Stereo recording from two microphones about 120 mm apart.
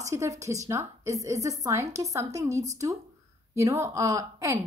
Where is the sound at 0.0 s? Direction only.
25° right (ahead or behind).